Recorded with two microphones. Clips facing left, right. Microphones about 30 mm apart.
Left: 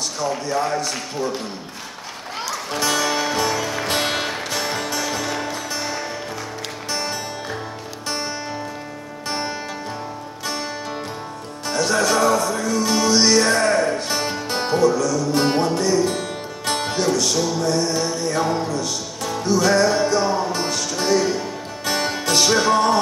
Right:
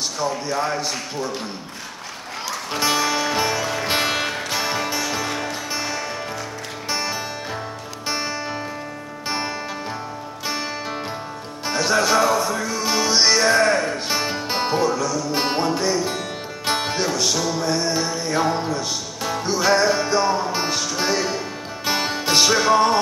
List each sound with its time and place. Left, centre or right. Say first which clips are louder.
0.5 s music: left 1 dB; centre
2.7 s music: right 1 dB; centre
4.0 s music: right 1 dB; centre
4.7 s music: even; centre
10.4 s music: right 1 dB; centre